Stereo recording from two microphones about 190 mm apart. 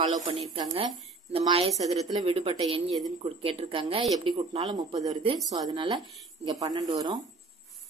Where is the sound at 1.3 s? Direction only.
30° right (ahead or behind).